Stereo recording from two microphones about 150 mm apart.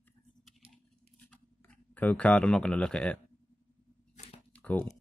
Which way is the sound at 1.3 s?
10° left (ahead or behind).